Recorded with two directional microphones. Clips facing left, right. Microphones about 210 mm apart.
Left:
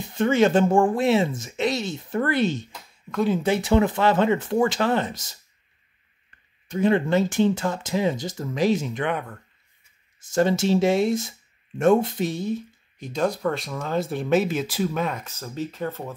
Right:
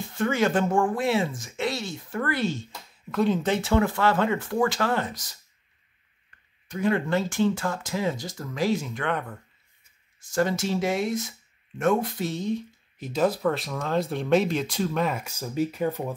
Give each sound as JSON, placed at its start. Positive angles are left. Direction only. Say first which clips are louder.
{"t": 0.0, "sound": "speech", "louder": "left 5 dB", "side_deg": 20}
{"t": 3.1, "sound": "speech", "louder": "left 1 dB", "side_deg": 5}
{"t": 6.7, "sound": "speech", "louder": "left 4 dB", "side_deg": 25}
{"t": 10.3, "sound": "speech", "louder": "left 5 dB", "side_deg": 25}
{"t": 12.2, "sound": "speech", "louder": "left 2 dB", "side_deg": 10}